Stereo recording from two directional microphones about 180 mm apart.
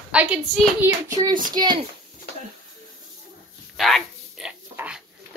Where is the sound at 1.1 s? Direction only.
20° right (ahead or behind).